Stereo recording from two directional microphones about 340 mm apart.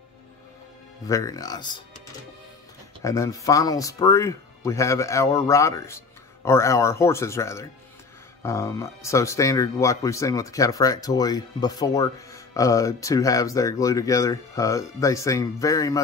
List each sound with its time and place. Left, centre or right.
1.0 s speech: centre
3.0 s speech: centre